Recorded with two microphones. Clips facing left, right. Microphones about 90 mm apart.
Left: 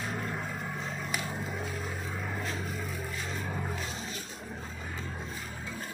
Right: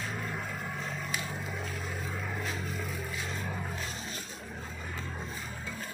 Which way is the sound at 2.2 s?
Centre (ahead or behind).